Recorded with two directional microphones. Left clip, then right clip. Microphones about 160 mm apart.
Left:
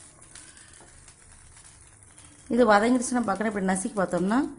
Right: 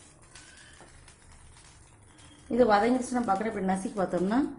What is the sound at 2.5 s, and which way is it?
A woman's voice, 55° left (ahead or behind).